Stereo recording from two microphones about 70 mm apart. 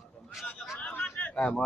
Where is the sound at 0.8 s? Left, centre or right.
Left.